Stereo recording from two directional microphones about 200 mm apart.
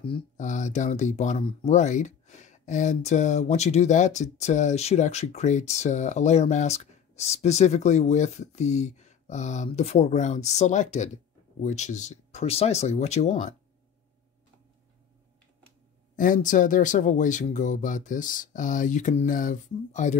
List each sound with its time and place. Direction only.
0.4 s speech: 40° left (ahead or behind)
16.2 s speech: 40° left (ahead or behind)